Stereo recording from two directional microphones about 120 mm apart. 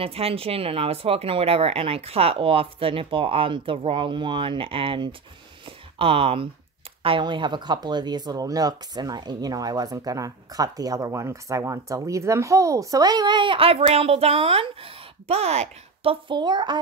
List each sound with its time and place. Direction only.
0.0 s speech: 55° right (ahead or behind)